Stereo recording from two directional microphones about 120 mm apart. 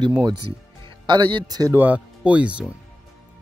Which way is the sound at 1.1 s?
30° right (ahead or behind).